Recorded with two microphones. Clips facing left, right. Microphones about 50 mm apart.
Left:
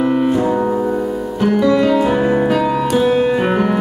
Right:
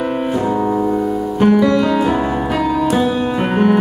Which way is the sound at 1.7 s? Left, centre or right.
Centre.